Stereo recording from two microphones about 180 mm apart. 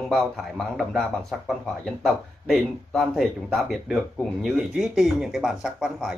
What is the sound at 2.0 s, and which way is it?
Speech, centre (ahead or behind).